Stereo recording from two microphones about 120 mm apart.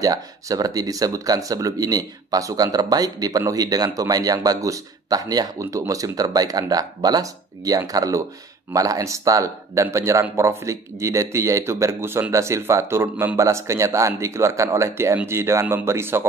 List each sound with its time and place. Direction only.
0.0 s speech: 30° right (ahead or behind)